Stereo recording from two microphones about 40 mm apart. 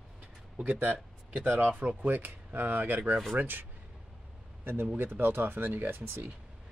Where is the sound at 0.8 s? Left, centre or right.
Right.